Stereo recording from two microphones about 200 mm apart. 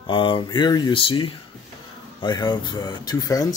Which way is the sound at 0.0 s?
25° left (ahead or behind).